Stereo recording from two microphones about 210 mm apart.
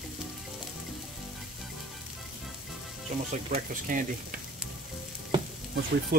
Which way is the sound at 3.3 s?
35° right (ahead or behind).